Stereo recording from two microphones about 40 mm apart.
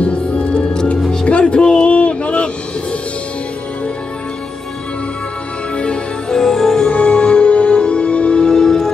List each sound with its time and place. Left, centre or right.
0.0 s music: left
1.8 s a sound: left
6.3 s music: centre
6.9 s music: left; by 8.9 s centre